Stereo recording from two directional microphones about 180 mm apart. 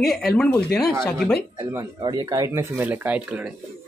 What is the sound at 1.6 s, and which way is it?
Speech, 15° right (ahead or behind).